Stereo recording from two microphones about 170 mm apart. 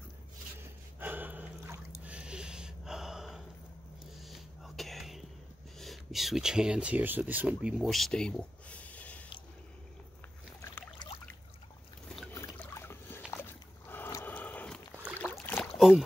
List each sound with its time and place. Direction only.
0.6 s gasp: 10° right (ahead or behind)
2.0 s a sound: 5° right (ahead or behind)
5.8 s speech: centre (ahead or behind)
10.7 s trickle: 25° left (ahead or behind)
12.4 s boat: 15° left (ahead or behind)
13.4 s rowboat: 10° left (ahead or behind)